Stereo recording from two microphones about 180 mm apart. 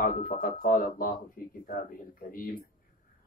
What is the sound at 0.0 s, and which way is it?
Speech, 50° left (ahead or behind).